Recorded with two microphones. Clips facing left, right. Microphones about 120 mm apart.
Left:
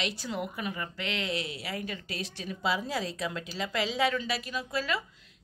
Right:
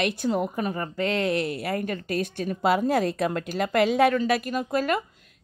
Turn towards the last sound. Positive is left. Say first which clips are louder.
# right 7 dB
turn(degrees=-50)  # may be behind; listen again after turning